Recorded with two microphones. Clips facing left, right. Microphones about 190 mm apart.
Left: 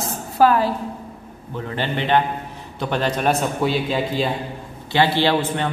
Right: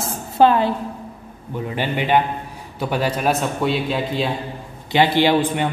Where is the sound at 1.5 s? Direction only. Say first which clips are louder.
Right 2 dB; 15° right (ahead or behind).